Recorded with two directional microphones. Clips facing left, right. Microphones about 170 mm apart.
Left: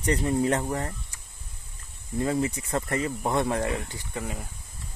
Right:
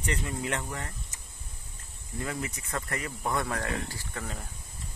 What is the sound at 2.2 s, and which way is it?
Speech, 30° left (ahead or behind).